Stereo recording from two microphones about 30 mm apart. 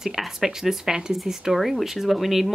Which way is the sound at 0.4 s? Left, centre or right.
Centre.